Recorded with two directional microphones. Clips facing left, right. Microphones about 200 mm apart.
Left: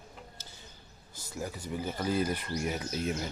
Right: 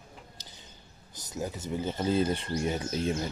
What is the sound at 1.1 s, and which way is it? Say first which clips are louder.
Speech: right 3 dB; 20° right (ahead or behind).